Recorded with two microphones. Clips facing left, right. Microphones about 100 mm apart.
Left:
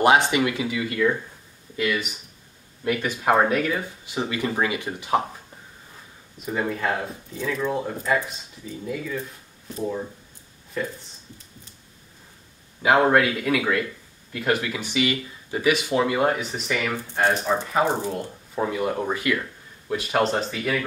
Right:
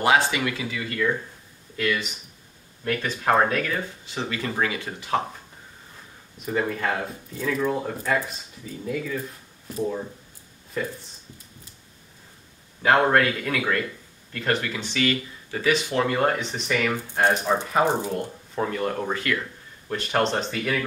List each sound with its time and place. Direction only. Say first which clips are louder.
0.0 s speech: left 3 dB; 20° left (ahead or behind)
6.4 s speech: even; 5° left (ahead or behind)
12.8 s speech: left 1 dB; 10° left (ahead or behind)
17.1 s speech: even; 10° right (ahead or behind)
18.1 s speech: right 1 dB; 5° left (ahead or behind)